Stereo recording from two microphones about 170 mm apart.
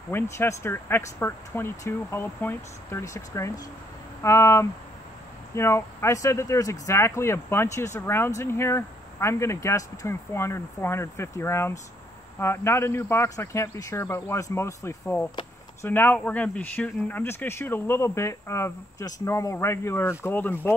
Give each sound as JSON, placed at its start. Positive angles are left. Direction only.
{"t": 0.1, "sound": "speech", "side_deg": 15}